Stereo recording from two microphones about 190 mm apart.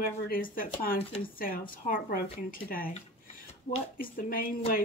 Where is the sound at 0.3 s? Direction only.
50° left (ahead or behind).